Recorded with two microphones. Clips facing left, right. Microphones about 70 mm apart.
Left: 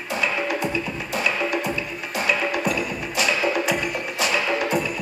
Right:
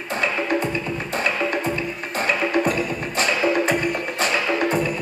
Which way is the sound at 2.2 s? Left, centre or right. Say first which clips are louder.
Right 3 dB; right.